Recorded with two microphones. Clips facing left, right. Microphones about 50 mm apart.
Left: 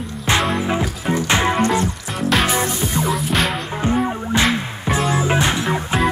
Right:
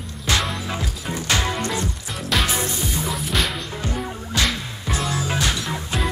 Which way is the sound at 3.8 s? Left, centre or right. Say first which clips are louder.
Left 12 dB; left.